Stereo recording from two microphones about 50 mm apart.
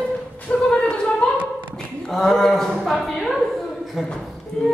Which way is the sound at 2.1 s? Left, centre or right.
Centre.